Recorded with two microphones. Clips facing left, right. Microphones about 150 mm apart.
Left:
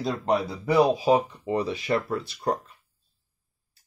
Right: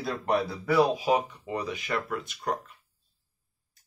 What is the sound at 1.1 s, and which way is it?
Speech, 30° left (ahead or behind).